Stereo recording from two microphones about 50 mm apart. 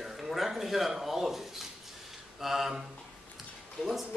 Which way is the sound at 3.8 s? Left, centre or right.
Centre.